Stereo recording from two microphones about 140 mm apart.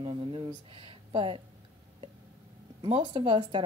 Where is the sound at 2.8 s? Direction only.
35° right (ahead or behind).